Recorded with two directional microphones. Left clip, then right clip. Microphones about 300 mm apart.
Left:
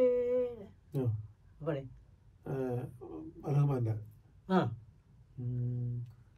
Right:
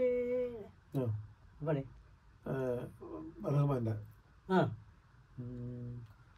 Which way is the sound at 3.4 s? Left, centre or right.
Centre.